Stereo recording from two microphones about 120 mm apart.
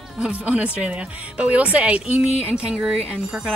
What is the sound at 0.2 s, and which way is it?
Speech, 10° right (ahead or behind).